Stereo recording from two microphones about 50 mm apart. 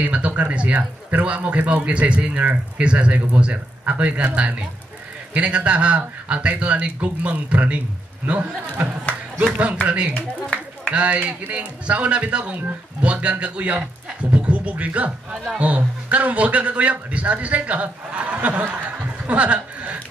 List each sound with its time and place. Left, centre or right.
0.0 s a man's voice: right
2.8 s a man's voice: right
10.1 s speech: centre
10.9 s a man's voice: right